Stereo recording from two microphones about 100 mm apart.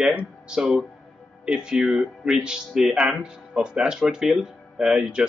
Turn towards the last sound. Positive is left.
turn(degrees=-5)  # may be behind; listen again after turning